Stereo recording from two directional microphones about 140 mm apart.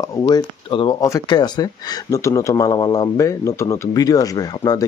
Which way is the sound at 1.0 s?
25° left (ahead or behind).